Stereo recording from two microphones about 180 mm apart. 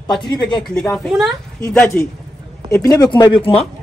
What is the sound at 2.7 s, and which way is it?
Speech, 20° left (ahead or behind).